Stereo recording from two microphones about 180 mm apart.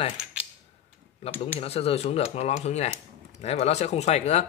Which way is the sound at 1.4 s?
35° left (ahead or behind).